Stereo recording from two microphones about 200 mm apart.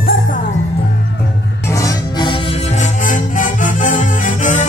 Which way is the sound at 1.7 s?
15° left (ahead or behind).